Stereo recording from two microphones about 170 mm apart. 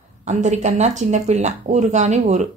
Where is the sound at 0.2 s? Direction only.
45° right (ahead or behind).